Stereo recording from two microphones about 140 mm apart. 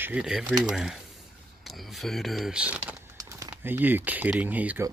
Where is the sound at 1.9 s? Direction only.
Centre (ahead or behind).